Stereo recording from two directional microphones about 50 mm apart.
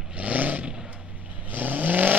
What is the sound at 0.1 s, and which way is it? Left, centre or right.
Vehicle, right.